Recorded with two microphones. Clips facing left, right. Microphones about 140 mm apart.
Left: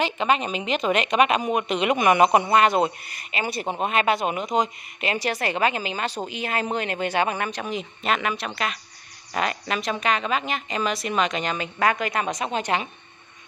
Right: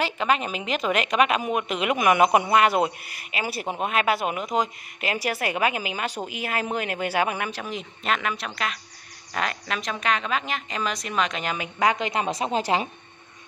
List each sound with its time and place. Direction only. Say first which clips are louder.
0.0 s a woman's voice: left 1 dB; centre (ahead or behind)
11.5 s a woman's voice: even; 15° right (ahead or behind); by 12.8 s 30° right (ahead or behind)